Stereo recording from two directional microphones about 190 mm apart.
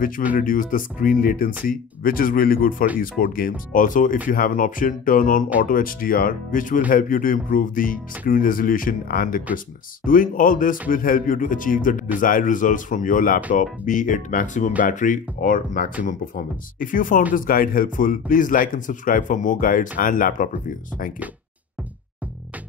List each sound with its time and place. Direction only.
0.4 s a man's voice: 45° left (ahead or behind)